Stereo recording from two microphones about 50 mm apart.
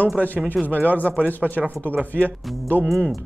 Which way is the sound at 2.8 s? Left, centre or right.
Centre.